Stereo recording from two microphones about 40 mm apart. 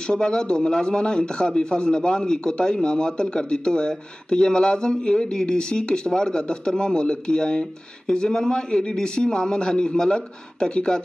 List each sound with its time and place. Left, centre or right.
0.0 s speech: left